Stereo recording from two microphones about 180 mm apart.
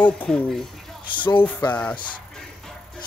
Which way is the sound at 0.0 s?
5° left (ahead or behind).